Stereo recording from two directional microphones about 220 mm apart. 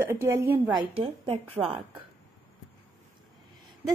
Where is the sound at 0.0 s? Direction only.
10° right (ahead or behind).